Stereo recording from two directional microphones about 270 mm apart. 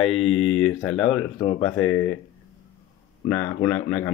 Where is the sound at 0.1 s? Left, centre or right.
Centre.